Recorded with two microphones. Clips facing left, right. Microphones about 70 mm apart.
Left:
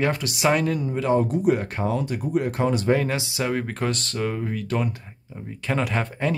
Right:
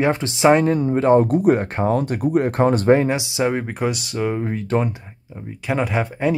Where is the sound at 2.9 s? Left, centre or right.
Right.